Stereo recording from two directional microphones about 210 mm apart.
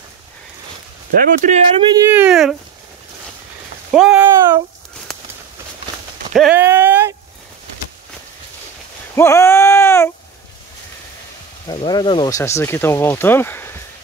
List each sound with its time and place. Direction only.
1.1 s speech: 40° right (ahead or behind)
1.8 s speech: 20° right (ahead or behind)
3.9 s speech: 5° right (ahead or behind)
6.3 s a sound: 5° right (ahead or behind)
9.1 s a sound: 15° left (ahead or behind)
11.6 s speech: 25° left (ahead or behind)